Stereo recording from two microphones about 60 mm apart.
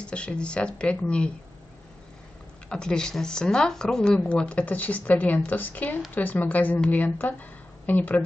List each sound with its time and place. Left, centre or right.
0.0 s speech: centre
2.7 s a woman's voice: centre